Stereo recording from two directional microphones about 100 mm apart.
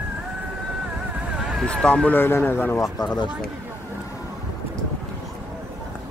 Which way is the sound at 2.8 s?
40° left (ahead or behind).